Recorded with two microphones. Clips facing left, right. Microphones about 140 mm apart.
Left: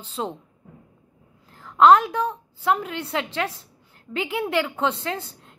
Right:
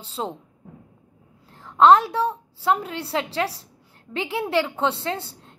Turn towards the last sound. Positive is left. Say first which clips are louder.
# right 1 dB
turn(degrees=-30)  # may be behind; listen again after turning